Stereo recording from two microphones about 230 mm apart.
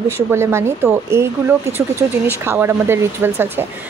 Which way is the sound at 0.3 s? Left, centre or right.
Centre.